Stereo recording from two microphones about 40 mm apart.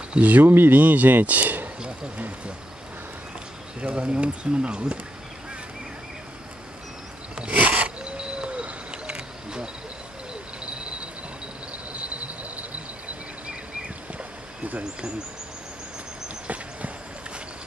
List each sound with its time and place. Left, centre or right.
0.1 s speech: right
0.5 s speech: right
0.7 s speech: right
1.2 s a sound: right
3.9 s speech: right
7.5 s a sound: right
14.6 s insect: right